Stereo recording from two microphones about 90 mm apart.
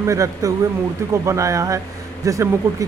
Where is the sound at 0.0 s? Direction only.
35° right (ahead or behind).